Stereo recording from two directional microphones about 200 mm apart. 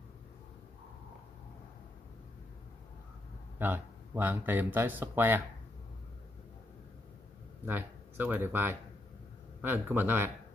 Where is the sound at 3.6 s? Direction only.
10° right (ahead or behind).